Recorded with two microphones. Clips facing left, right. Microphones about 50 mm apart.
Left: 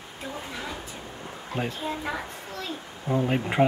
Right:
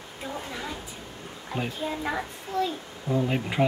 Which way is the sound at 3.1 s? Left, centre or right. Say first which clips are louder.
Even; left.